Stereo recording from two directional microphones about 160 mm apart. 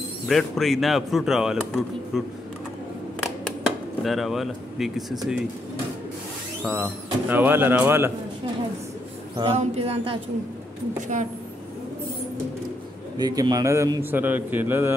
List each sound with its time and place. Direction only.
0.3 s speech: centre (ahead or behind)
4.0 s speech: centre (ahead or behind)
6.6 s speech: 10° right (ahead or behind)
9.4 s a sound: 40° right (ahead or behind)
11.0 s a woman's voice: 50° right (ahead or behind)
13.2 s a man's voice: 25° right (ahead or behind)